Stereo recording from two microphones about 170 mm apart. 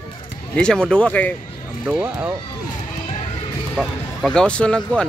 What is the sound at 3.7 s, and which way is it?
Speech, 5° left (ahead or behind).